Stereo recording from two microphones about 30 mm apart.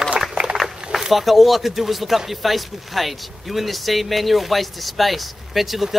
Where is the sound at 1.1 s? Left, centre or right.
Centre.